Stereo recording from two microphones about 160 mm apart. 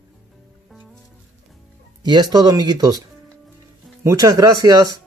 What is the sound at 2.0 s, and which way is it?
Speech, 25° right (ahead or behind).